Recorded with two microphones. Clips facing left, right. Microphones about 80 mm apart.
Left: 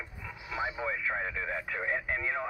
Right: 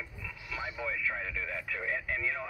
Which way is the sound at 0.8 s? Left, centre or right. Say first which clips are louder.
Left 2 dB; left.